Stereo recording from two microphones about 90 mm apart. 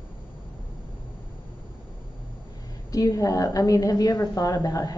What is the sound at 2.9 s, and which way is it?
A woman's voice, 40° left (ahead or behind).